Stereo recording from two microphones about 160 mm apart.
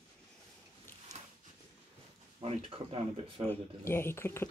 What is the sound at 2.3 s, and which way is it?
Speech, 35° right (ahead or behind).